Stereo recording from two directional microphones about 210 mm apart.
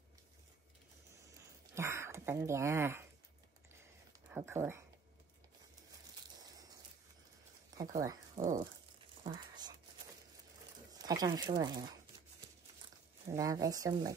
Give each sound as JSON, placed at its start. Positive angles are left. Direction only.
{"t": 1.8, "sound": "speech", "side_deg": -10}
{"t": 4.3, "sound": "speech", "side_deg": -10}
{"t": 6.4, "sound": "a sound", "side_deg": -20}
{"t": 7.7, "sound": "speech", "side_deg": -15}
{"t": 10.9, "sound": "speech", "side_deg": -20}
{"t": 13.3, "sound": "speech", "side_deg": -15}